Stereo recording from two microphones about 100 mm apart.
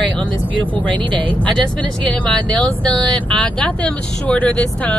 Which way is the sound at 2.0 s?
10° left (ahead or behind).